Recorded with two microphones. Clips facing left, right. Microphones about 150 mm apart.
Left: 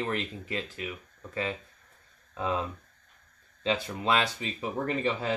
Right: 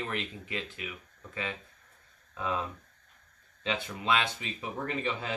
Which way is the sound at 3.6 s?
35° left (ahead or behind).